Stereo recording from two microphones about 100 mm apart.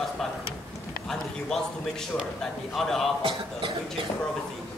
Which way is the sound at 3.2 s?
60° right (ahead or behind).